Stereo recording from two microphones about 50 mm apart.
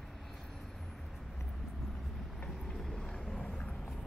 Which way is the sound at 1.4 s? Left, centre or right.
Centre.